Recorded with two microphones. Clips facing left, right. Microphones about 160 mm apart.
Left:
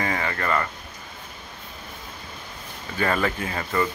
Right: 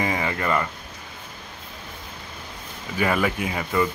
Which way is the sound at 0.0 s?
15° right (ahead or behind).